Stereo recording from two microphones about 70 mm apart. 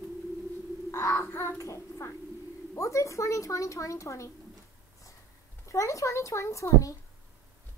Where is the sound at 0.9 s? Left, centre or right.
Left.